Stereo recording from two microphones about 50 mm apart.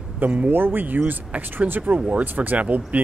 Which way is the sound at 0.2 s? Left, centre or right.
Right.